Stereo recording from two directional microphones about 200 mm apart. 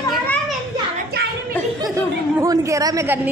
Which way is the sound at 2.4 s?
15° right (ahead or behind).